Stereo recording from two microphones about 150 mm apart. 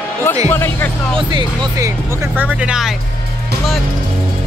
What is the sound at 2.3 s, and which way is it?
Speech, 10° right (ahead or behind).